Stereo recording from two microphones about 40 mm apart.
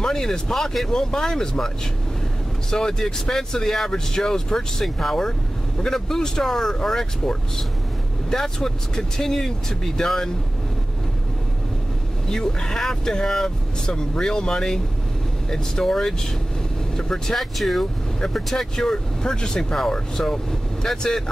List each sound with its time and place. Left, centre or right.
0.0 s speech: centre
2.7 s speech: centre
12.3 s speech: centre
16.9 s vehicle: centre
17.4 s speech: centre